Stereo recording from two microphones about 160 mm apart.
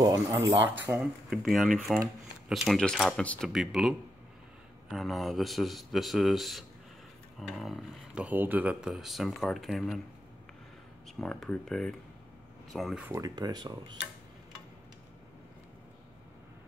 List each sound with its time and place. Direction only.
0.0 s speech: 25° right (ahead or behind)
1.3 s speech: centre (ahead or behind)
11.1 s speech: centre (ahead or behind)
13.0 s speech: 20° right (ahead or behind)